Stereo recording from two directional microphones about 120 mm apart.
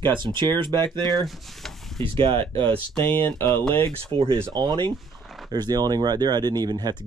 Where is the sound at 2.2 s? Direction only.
45° right (ahead or behind).